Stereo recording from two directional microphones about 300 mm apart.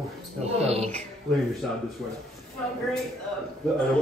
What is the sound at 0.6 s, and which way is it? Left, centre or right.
Speech, right.